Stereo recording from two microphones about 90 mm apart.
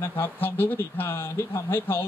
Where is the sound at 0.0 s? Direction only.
25° left (ahead or behind).